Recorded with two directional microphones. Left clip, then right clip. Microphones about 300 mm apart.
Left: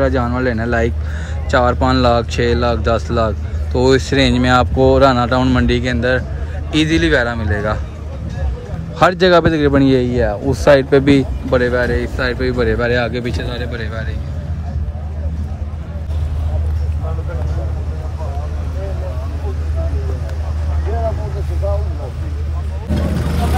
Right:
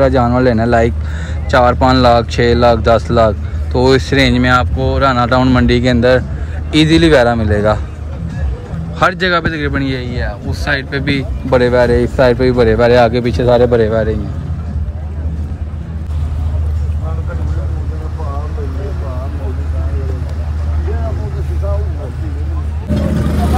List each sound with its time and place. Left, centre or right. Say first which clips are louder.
0.0 s speech: right 6 dB; centre
8.9 s speech: left 2 dB; centre
11.5 s speech: right 5 dB; centre